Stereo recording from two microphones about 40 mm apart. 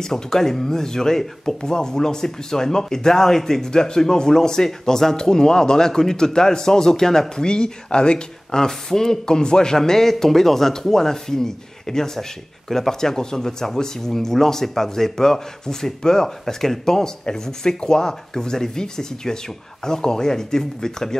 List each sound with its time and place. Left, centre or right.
0.0 s speech: centre